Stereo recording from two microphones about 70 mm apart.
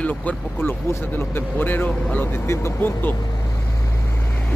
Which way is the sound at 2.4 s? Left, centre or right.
Left.